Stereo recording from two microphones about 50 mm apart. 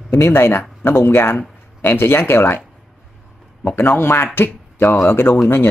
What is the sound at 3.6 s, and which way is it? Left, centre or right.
Speech, left.